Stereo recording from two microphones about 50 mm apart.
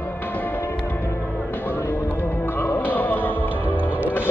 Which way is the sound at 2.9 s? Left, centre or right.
Left.